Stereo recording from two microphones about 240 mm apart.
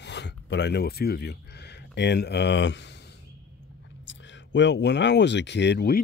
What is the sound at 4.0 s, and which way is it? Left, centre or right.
Speech, left.